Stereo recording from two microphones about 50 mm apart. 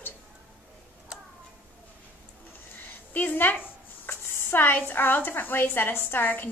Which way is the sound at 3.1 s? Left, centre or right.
Left.